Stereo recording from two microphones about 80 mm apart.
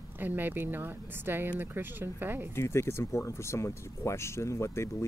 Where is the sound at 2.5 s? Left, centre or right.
Left.